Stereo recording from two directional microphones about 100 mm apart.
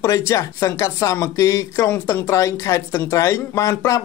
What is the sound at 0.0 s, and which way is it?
Speech, 30° left (ahead or behind).